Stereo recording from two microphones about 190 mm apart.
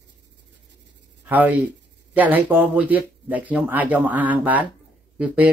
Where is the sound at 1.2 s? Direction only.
10° right (ahead or behind).